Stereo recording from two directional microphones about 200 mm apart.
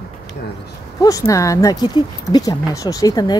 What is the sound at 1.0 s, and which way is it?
Speech, 15° left (ahead or behind).